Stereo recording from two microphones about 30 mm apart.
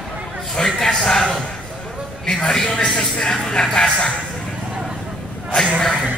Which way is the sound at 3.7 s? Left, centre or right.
Left.